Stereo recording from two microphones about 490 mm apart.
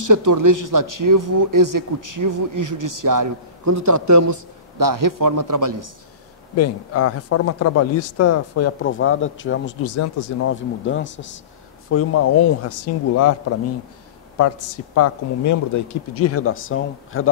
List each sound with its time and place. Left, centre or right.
0.0 s speech: right
6.5 s speech: left
14.4 s speech: left